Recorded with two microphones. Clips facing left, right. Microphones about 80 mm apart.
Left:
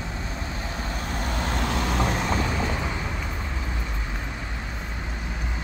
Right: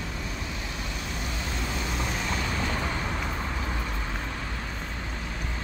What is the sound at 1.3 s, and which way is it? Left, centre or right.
Vehicle, left.